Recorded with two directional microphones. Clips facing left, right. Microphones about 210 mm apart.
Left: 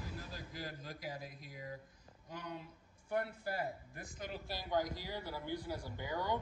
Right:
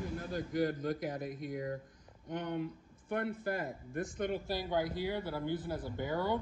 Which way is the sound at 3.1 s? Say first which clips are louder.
Right 3 dB; 50° right (ahead or behind).